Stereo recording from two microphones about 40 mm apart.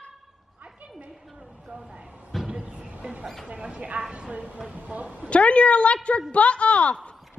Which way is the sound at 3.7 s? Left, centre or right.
Right.